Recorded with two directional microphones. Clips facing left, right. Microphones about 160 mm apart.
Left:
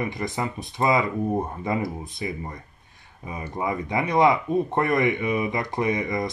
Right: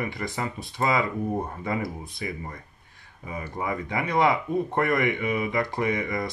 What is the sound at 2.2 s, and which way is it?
Speech, 25° left (ahead or behind).